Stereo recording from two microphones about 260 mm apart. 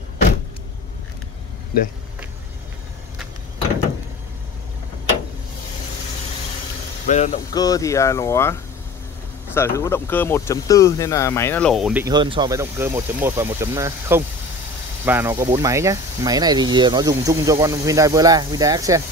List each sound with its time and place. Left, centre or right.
7.1 s speech: left
7.5 s speech: centre